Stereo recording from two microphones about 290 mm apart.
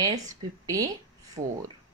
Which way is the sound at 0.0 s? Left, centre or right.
Centre.